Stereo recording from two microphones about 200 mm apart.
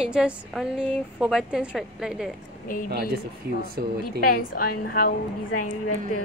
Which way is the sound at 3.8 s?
50° right (ahead or behind).